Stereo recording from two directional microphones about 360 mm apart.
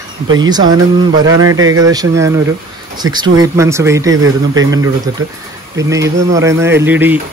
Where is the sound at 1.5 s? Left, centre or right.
Right.